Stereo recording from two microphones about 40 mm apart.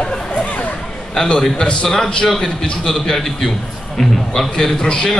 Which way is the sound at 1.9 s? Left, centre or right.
Centre.